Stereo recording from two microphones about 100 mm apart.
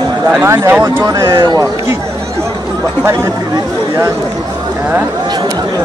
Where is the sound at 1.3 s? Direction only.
50° right (ahead or behind).